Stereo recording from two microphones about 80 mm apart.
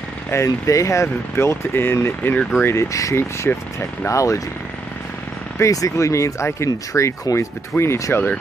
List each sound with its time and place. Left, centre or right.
0.3 s speech: left
5.6 s speech: left